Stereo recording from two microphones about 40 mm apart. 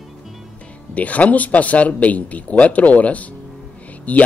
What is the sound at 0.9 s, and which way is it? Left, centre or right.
Speech, left.